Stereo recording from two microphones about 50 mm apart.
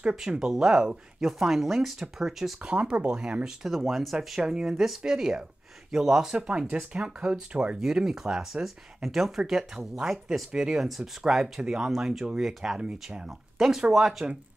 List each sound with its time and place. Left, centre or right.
0.1 s speech: centre
1.4 s speech: centre
2.6 s speech: centre
3.6 s speech: centre
6.3 s speech: right